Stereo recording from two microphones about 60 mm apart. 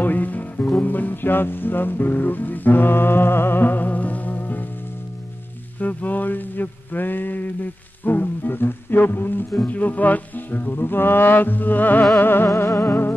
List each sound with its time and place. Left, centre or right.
0.0 s music: left
5.8 s a sound: left
9.7 s music: left
12.5 s music: left
12.8 s music: left